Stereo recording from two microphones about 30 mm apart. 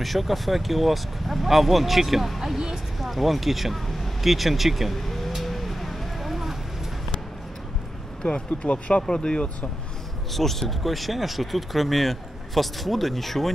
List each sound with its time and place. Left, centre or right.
0.0 s speech: centre
3.0 s speech: centre
5.0 s vehicle: centre
8.3 s speech: left
9.0 s speech: left
10.3 s speech: centre